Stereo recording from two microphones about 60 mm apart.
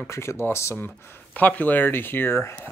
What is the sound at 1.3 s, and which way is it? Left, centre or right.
Speech, left.